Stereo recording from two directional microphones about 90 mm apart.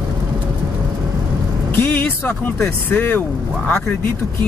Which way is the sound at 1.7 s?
25° left (ahead or behind).